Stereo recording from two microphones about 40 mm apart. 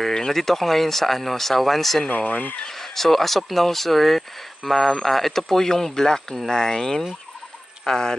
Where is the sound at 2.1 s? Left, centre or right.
Left.